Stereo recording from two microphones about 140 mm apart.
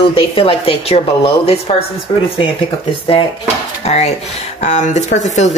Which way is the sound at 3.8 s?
50° left (ahead or behind).